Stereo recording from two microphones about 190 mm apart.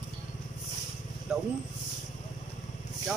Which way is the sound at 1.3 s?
5° right (ahead or behind).